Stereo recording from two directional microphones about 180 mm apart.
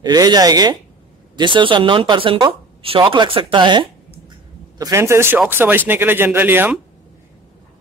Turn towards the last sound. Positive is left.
turn(degrees=-10)  # may be behind; listen again after turning